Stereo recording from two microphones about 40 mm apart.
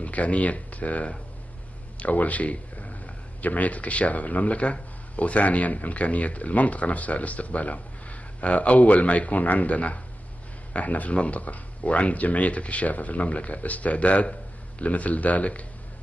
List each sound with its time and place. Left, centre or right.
0.0 s speech: left